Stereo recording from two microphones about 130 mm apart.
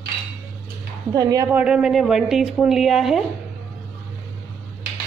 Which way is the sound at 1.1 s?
30° right (ahead or behind).